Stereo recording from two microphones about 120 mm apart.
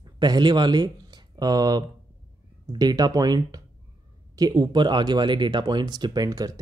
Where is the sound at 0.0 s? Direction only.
35° right (ahead or behind).